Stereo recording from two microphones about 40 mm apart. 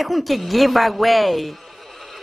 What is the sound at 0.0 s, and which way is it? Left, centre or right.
A woman's voice, centre.